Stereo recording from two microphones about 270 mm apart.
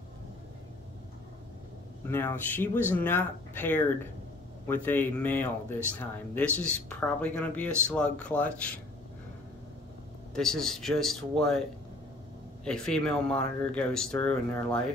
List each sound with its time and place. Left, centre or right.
2.0 s speech: centre
10.3 s speech: centre
12.6 s speech: centre